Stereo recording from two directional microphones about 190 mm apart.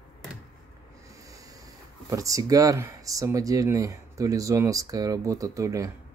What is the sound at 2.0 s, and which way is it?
Speech, 15° right (ahead or behind).